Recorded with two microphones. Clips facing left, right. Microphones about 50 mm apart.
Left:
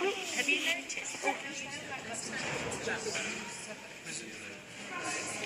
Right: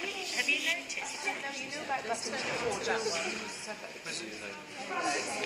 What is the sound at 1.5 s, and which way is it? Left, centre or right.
Speech, right.